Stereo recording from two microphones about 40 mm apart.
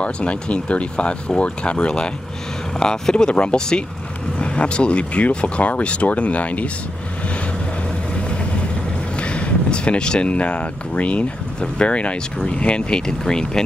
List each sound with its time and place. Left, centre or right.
0.0 s speech: left
9.2 s speech: left